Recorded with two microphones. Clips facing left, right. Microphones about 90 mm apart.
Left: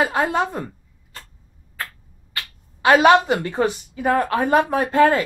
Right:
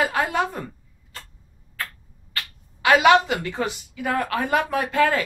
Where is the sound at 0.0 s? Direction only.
30° left (ahead or behind).